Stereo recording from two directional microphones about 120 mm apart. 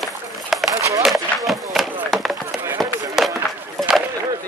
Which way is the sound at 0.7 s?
25° right (ahead or behind).